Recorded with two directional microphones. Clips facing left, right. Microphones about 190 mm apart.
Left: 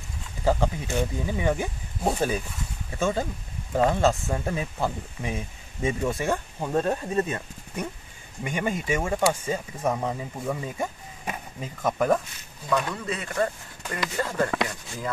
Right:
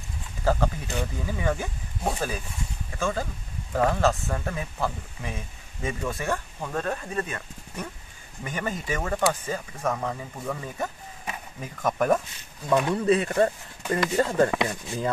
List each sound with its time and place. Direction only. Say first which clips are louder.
0.4 s speech: left 1 dB; 15° left (ahead or behind)
8.5 s speech: left 3 dB; 15° left (ahead or behind)
11.8 s speech: even; centre (ahead or behind)
12.6 s speech: right 3 dB; 20° right (ahead or behind)
12.9 s speech: right 8 dB; 30° right (ahead or behind)
14.5 s speech: right 2 dB; 15° right (ahead or behind)